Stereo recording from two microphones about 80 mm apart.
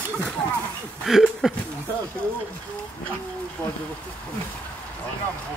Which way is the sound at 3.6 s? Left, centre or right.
Centre.